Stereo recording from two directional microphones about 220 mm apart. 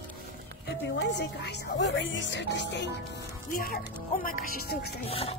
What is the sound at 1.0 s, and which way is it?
Speech, 50° left (ahead or behind).